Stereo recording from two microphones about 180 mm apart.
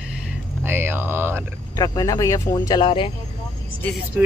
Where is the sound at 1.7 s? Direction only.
20° left (ahead or behind).